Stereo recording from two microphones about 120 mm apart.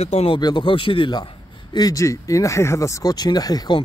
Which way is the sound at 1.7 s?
30° left (ahead or behind).